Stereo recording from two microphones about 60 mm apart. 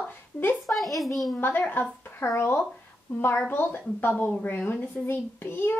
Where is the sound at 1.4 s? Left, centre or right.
Left.